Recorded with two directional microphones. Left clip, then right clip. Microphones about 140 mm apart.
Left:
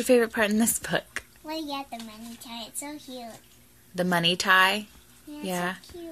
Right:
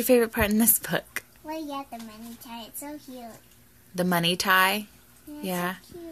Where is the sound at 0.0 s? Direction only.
30° right (ahead or behind).